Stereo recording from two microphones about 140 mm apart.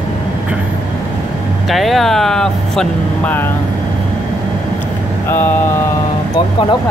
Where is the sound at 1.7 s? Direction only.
Centre (ahead or behind).